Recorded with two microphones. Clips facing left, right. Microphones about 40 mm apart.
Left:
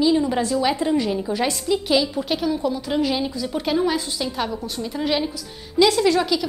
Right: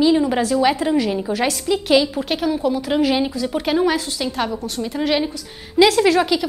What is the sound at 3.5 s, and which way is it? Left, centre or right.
A woman's voice, right.